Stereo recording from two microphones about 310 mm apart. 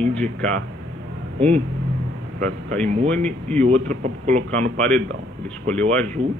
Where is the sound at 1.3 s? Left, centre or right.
Centre.